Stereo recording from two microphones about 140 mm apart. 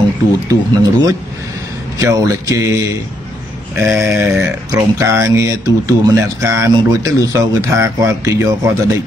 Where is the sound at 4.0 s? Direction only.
15° right (ahead or behind).